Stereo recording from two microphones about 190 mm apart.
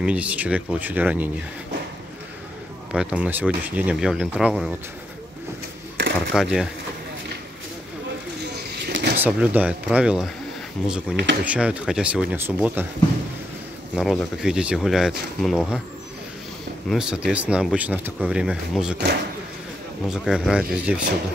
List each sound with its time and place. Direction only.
0.0 s speech: 5° right (ahead or behind)
2.9 s speech: 5° right (ahead or behind)
5.9 s a sound: 75° right (ahead or behind)
6.3 s speech: 5° right (ahead or behind)
8.8 s a sound: 60° right (ahead or behind)
9.2 s speech: 10° right (ahead or behind)
13.9 s speech: centre (ahead or behind)
16.9 s speech: 5° right (ahead or behind)
20.1 s speech: 5° right (ahead or behind)